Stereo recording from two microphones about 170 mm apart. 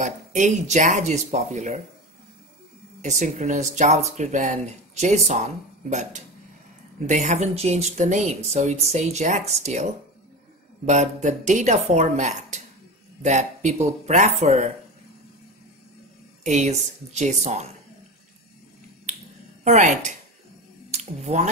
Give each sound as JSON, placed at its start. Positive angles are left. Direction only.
{"t": 0.0, "sound": "speech", "side_deg": -45}
{"t": 3.0, "sound": "speech", "side_deg": -45}
{"t": 16.4, "sound": "speech", "side_deg": -45}
{"t": 19.6, "sound": "speech", "side_deg": -45}